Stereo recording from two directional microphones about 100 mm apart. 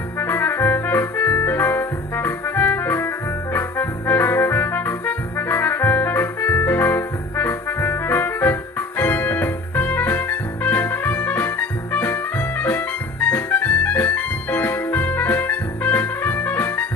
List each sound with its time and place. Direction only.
0.2 s brass instrument: 20° left (ahead or behind)